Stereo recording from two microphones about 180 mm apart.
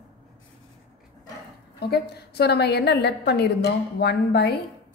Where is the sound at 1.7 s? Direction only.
65° left (ahead or behind).